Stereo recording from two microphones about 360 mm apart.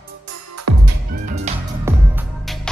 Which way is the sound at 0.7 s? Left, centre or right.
Right.